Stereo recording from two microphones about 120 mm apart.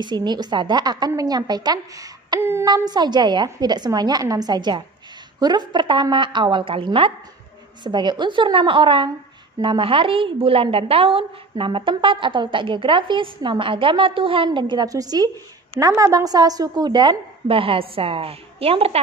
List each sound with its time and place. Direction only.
0.0 s a woman's voice: 35° right (ahead or behind)
17.5 s a woman's voice: 50° right (ahead or behind)